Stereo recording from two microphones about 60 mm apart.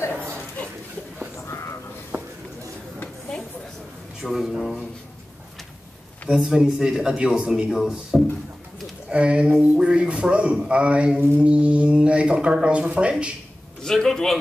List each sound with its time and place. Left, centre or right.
2.1 s a sound: right
4.2 s speech: centre
6.2 s speech: centre
9.1 s speech: centre
13.8 s speech: centre